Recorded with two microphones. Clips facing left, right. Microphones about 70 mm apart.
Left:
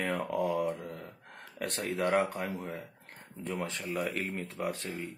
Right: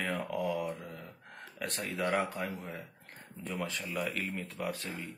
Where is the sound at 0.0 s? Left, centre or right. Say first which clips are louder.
Left 3 dB; left.